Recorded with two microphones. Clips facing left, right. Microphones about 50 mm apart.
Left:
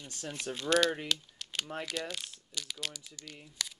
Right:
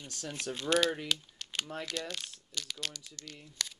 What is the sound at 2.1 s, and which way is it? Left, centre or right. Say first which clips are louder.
Crumpling: even; centre.